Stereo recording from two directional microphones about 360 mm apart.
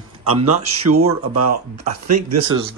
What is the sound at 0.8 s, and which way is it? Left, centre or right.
Speech, right.